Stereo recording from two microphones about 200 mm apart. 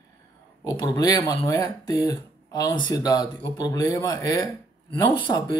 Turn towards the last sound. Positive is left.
turn(degrees=25)  # may be behind; listen again after turning